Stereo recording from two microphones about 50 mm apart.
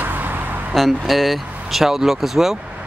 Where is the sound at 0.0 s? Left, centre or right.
Right.